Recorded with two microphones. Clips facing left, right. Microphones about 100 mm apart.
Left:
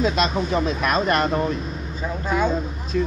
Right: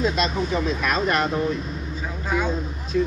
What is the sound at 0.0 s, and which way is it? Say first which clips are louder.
Speech: left 2 dB; 75° left (ahead or behind).